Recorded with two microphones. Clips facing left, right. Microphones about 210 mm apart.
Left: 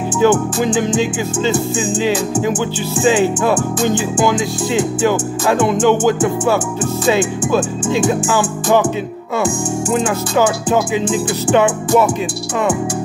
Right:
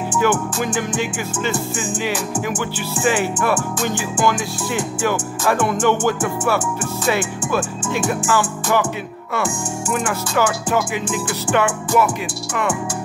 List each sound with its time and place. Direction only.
0.2 s music: 15° left (ahead or behind)
3.0 s music: 20° left (ahead or behind)
7.1 s speech: 20° left (ahead or behind)
8.1 s music: 15° left (ahead or behind)